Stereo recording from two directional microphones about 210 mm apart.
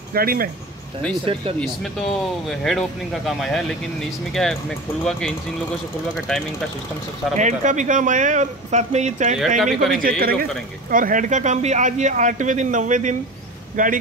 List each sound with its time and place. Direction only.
0.1 s a man's voice: 45° right (ahead or behind)
1.2 s speech: 25° right (ahead or behind)
2.4 s speech: centre (ahead or behind)
7.3 s a man's voice: 35° right (ahead or behind)
9.6 s speech: centre (ahead or behind)
9.9 s a man's voice: 45° right (ahead or behind)